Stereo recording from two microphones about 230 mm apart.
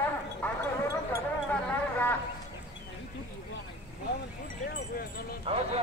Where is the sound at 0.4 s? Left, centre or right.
Centre.